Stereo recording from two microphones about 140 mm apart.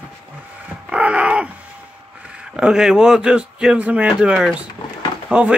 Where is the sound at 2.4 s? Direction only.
5° right (ahead or behind).